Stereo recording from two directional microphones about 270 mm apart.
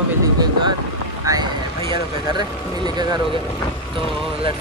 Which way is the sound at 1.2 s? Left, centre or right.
Centre.